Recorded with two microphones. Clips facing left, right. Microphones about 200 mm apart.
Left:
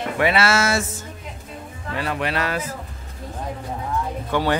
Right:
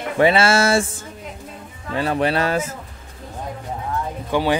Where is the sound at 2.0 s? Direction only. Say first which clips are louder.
Right 5 dB; 30° right (ahead or behind).